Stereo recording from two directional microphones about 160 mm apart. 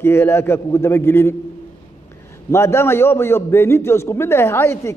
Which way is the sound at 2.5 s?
15° left (ahead or behind).